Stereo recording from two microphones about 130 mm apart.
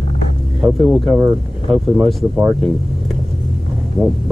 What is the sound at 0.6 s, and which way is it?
Speech, 5° right (ahead or behind).